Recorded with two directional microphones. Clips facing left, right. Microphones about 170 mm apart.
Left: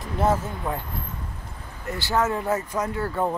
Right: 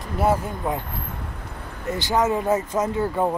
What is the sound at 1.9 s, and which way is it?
Speech, 20° right (ahead or behind).